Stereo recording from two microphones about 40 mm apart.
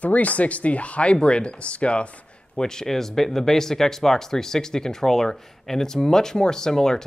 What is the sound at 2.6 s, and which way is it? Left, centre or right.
Speech, centre.